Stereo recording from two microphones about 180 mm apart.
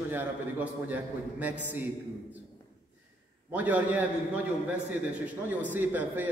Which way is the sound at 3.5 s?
10° right (ahead or behind).